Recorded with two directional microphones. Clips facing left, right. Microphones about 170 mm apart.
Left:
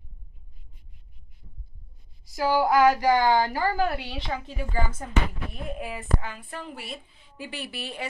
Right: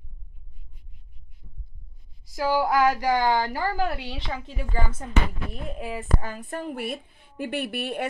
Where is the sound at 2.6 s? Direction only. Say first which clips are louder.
Left 4 dB; 25° left (ahead or behind).